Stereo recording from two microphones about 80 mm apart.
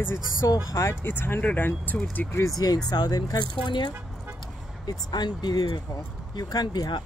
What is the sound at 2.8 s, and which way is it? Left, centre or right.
Speech, left.